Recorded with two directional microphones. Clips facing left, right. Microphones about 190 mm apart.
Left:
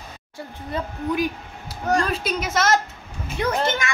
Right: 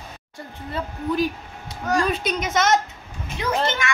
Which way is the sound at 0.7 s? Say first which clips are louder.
Even; 15° left (ahead or behind).